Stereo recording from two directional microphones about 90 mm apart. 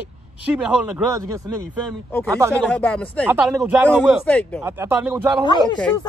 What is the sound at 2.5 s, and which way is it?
Speech, 15° left (ahead or behind).